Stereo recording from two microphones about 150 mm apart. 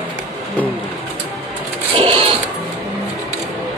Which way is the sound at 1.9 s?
35° right (ahead or behind).